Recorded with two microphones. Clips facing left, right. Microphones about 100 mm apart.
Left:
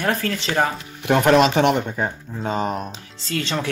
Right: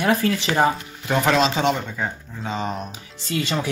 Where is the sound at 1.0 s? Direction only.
60° left (ahead or behind).